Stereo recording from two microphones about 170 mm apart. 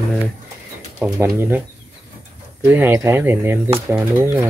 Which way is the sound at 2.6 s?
10° right (ahead or behind).